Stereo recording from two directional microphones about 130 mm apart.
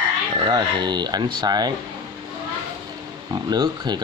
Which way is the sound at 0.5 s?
35° right (ahead or behind).